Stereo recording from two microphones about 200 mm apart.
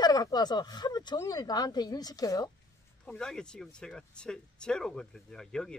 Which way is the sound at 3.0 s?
5° left (ahead or behind).